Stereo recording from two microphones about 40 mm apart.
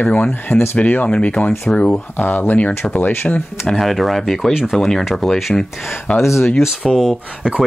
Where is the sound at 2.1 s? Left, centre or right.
Left.